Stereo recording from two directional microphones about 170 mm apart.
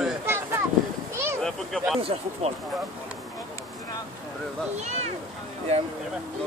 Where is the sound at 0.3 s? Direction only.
15° right (ahead or behind).